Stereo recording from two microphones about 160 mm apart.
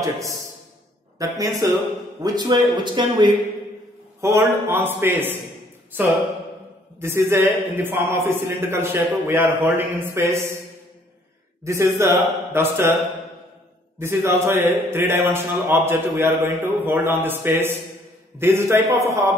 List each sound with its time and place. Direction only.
1.1 s a man's voice: 20° right (ahead or behind)
4.2 s a man's voice: 15° right (ahead or behind)
7.0 s a man's voice: 15° right (ahead or behind)
11.6 s a man's voice: 20° right (ahead or behind)
13.9 s a man's voice: 15° right (ahead or behind)